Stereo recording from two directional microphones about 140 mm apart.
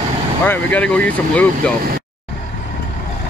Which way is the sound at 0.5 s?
10° left (ahead or behind).